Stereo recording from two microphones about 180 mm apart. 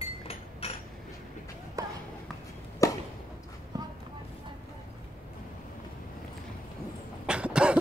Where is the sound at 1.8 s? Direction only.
20° right (ahead or behind).